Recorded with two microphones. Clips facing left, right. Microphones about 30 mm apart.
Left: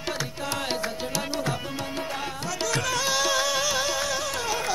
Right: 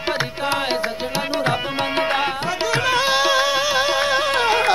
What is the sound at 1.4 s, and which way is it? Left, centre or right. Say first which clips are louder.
Tabla: right 9 dB; right.